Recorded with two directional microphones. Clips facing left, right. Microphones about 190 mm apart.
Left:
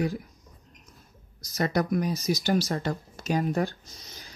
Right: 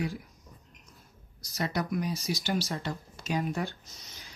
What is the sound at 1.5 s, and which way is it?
Speech, 45° left (ahead or behind).